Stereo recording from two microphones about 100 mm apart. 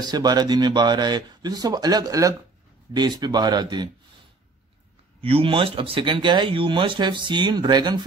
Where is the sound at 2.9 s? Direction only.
45° right (ahead or behind).